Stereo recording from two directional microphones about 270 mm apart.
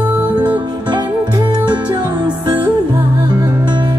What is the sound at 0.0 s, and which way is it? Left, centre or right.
Music, centre.